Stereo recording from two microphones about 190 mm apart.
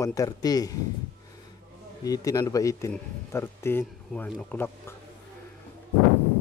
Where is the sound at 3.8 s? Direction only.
Centre (ahead or behind).